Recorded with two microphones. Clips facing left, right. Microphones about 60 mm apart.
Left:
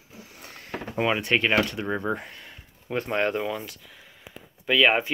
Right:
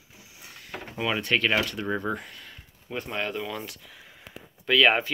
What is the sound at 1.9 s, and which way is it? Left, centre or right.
Speech, left.